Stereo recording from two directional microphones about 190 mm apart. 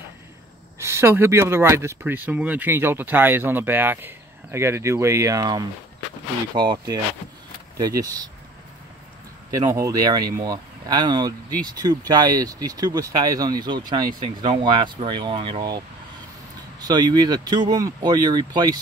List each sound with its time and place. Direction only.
0.8 s speech: 15° right (ahead or behind)
9.5 s speech: 15° right (ahead or behind)
16.8 s speech: 20° right (ahead or behind)